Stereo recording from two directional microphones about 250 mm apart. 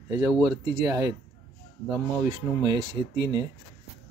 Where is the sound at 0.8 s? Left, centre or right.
Centre.